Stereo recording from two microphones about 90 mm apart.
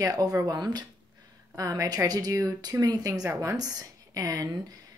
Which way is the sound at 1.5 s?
40° right (ahead or behind).